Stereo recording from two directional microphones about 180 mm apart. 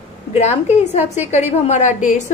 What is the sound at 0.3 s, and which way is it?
A woman's voice, 35° left (ahead or behind).